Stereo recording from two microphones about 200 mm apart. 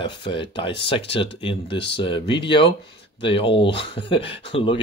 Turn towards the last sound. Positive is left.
turn(degrees=25)  # may be behind; listen again after turning